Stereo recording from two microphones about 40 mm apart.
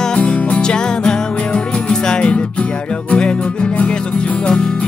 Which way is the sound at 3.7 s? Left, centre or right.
Left.